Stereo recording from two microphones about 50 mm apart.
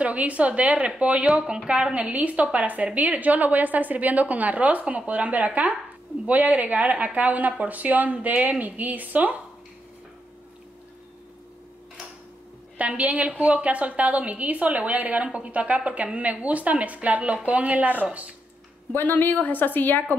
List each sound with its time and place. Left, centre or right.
0.0 s a woman's voice: right
12.7 s a woman's voice: right
18.9 s a woman's voice: left